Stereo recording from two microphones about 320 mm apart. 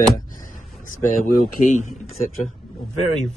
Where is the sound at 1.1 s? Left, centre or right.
Left.